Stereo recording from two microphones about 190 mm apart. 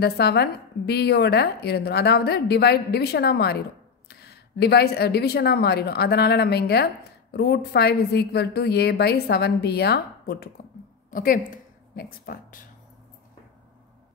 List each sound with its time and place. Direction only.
0.0 s a woman's voice: 60° left (ahead or behind)
11.1 s speech: 45° left (ahead or behind)